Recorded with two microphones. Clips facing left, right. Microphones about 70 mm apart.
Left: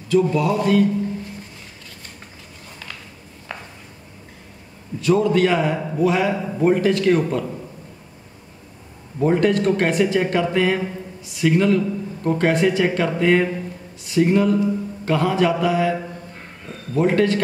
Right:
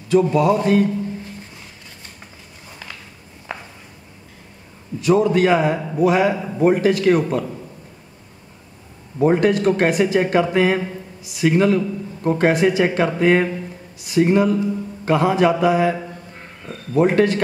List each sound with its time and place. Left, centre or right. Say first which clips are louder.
0.1 s speech: right 3 dB; right
3.5 s a sound: right 2 dB; centre
5.0 s speech: right 1 dB; centre
9.2 s speech: right 2 dB; centre